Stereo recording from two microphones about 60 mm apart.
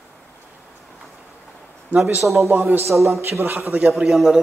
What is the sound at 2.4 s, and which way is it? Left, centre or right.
Speech, right.